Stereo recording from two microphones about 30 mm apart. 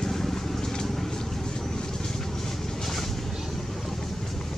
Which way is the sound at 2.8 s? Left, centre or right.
Centre.